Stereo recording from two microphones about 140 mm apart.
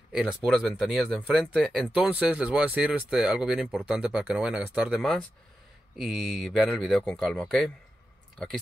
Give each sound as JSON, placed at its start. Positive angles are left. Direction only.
{"t": 0.1, "sound": "speech", "side_deg": -5}